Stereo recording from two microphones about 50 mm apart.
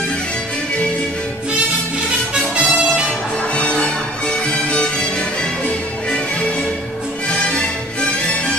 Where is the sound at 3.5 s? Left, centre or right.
Left.